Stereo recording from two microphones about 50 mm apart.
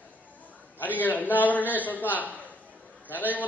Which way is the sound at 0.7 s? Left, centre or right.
Left.